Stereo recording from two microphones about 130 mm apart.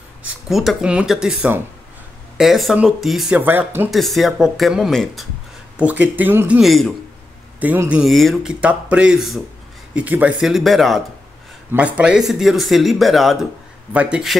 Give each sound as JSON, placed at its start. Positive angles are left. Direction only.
{"t": 0.5, "sound": "speech", "side_deg": 0}
{"t": 3.3, "sound": "speech", "side_deg": -15}
{"t": 3.9, "sound": "speech", "side_deg": 0}
{"t": 5.8, "sound": "speech", "side_deg": -10}
{"t": 8.0, "sound": "speech", "side_deg": 0}
{"t": 10.4, "sound": "speech", "side_deg": 0}